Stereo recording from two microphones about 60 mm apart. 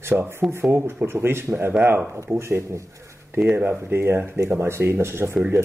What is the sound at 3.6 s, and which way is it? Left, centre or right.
Speech, right.